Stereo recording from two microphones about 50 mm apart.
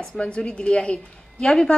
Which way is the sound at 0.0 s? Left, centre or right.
Centre.